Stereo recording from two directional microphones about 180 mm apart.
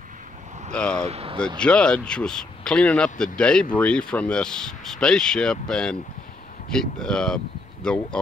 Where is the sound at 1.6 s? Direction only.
5° left (ahead or behind).